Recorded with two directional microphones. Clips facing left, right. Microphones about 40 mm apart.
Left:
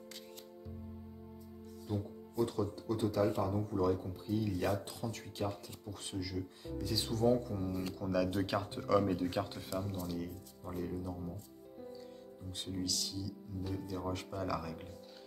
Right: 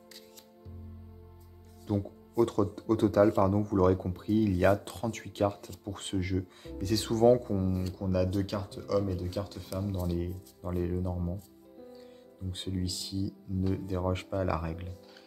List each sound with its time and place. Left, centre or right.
1.9 s speech: right
8.0 s speech: centre
8.3 s speech: centre
8.6 s speech: left
9.6 s speech: centre
10.0 s speech: centre
10.6 s speech: right
12.4 s speech: right
13.6 s speech: right
14.3 s speech: right